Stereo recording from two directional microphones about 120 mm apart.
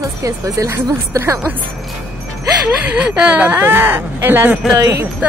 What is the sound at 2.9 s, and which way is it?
Speech, 10° right (ahead or behind).